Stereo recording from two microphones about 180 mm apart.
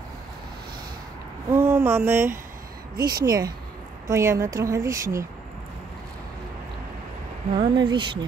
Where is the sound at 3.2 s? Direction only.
20° right (ahead or behind).